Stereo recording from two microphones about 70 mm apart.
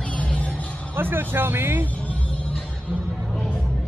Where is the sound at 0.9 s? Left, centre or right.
Right.